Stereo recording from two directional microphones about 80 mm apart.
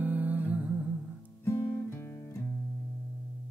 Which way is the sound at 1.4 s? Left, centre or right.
Left.